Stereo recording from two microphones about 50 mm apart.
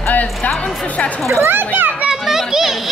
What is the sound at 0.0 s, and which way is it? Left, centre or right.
Music, left.